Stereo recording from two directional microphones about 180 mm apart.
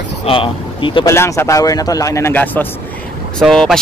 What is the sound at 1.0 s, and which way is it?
Speech, 15° left (ahead or behind).